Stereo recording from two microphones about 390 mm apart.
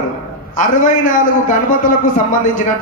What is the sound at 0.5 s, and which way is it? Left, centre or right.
A man's voice, centre.